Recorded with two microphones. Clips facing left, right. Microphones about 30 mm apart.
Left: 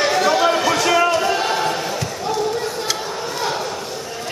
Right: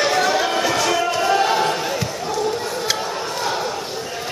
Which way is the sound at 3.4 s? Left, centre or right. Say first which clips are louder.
Even; centre.